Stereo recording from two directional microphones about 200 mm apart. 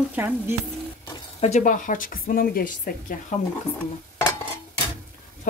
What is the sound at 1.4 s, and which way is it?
A woman's voice, 35° left (ahead or behind).